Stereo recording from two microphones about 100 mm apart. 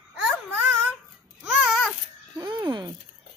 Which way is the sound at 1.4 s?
5° right (ahead or behind).